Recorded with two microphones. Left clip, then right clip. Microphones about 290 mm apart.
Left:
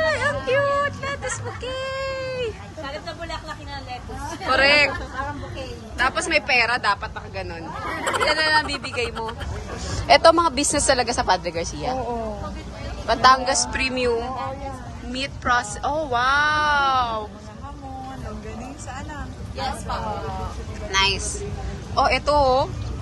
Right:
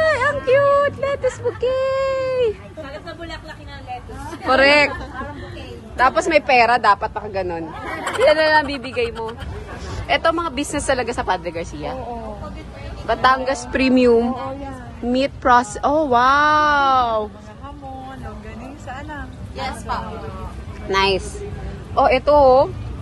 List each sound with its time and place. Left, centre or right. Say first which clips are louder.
0.0 s a sound: right 4 dB; centre
4.5 s speech: right 3 dB; right
5.9 s speech: right 6 dB; centre
8.0 s speech: right 6 dB; centre
13.0 s speech: even; centre
13.7 s a woman's voice: right 7 dB; centre
15.1 s speech: right 7 dB; centre
20.9 s a woman's voice: right 3 dB; centre